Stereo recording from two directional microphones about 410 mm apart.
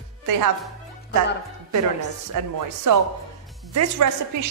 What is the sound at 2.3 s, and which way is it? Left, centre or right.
A woman's voice, right.